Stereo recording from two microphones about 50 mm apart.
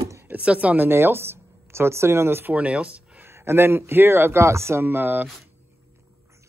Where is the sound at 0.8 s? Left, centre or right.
Right.